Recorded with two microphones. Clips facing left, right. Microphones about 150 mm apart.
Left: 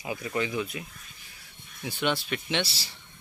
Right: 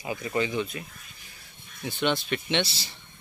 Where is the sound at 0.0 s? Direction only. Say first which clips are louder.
Right 2 dB; 5° left (ahead or behind).